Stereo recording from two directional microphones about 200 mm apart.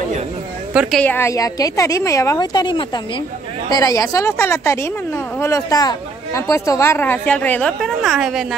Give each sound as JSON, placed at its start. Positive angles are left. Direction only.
{"t": 0.7, "sound": "speech", "side_deg": 5}